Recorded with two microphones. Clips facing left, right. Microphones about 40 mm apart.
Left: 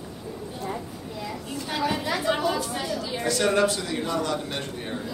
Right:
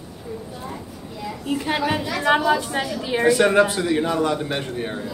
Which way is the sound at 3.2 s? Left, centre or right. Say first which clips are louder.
Right 6 dB; right.